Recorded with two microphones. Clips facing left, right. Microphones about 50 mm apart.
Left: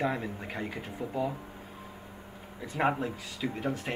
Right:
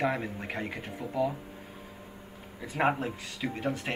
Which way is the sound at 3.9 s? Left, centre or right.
Right.